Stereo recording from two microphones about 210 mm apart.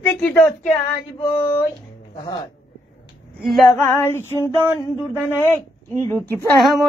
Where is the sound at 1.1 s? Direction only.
25° left (ahead or behind).